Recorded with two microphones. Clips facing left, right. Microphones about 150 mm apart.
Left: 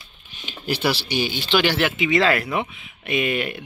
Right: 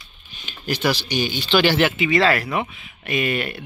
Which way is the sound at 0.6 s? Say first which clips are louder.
Right 1 dB; 10° left (ahead or behind).